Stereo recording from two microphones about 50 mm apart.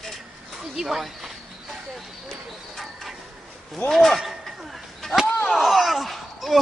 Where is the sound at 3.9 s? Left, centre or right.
Centre.